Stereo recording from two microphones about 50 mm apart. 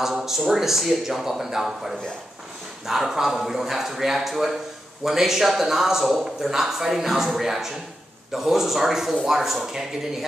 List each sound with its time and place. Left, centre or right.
0.0 s a man's voice: centre